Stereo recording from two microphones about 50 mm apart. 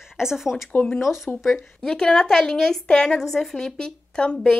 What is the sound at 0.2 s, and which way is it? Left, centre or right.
Speech, centre.